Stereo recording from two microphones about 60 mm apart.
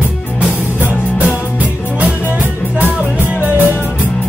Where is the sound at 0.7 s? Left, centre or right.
Right.